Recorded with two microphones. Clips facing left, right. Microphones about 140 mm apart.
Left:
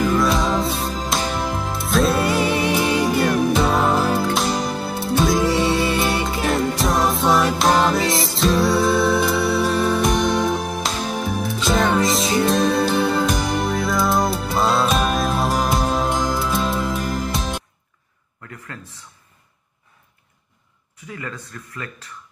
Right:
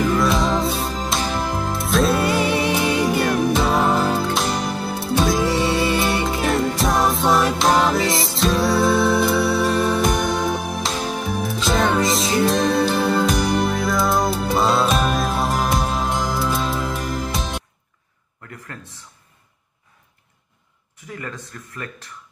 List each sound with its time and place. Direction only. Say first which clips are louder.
0.2 s music: even; centre (ahead or behind)